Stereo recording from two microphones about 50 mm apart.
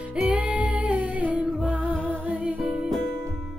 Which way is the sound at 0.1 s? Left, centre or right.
Right.